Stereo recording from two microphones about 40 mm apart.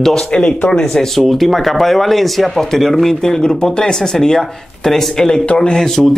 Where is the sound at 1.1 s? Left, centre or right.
Centre.